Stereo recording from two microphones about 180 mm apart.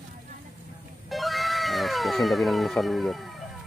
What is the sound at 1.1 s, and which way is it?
Cat, centre (ahead or behind).